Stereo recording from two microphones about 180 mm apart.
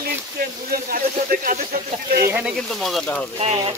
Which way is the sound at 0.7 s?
55° right (ahead or behind).